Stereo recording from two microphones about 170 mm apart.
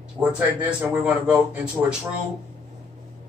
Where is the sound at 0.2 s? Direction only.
25° right (ahead or behind).